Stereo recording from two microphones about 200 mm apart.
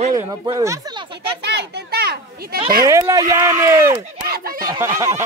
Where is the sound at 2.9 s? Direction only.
15° right (ahead or behind).